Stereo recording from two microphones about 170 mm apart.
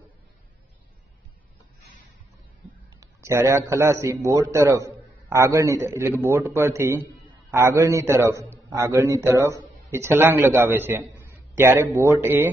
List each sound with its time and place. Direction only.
3.0 s a man's voice: 15° right (ahead or behind)